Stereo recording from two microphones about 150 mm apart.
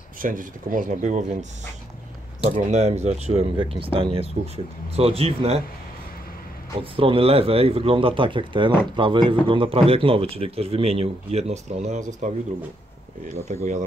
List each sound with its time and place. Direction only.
0.2 s speech: 65° right (ahead or behind)
2.6 s speech: 50° right (ahead or behind)
6.8 s speech: 35° right (ahead or behind)